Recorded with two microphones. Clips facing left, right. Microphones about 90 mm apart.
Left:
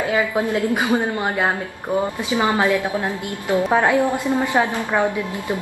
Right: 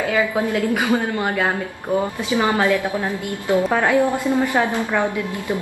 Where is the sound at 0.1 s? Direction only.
20° left (ahead or behind).